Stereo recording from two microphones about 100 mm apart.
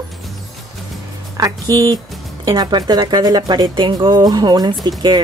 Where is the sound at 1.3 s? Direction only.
35° right (ahead or behind).